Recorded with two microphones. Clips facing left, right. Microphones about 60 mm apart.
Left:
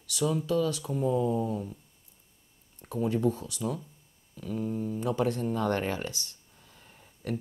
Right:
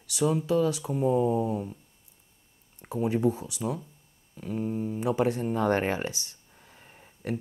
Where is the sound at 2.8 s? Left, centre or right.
Right.